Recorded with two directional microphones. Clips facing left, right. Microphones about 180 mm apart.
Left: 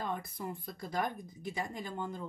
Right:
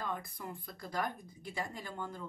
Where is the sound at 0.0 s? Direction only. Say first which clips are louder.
Left 3 dB; 25° left (ahead or behind).